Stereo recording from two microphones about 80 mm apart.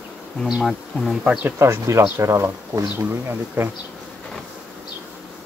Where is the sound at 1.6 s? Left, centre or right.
Right.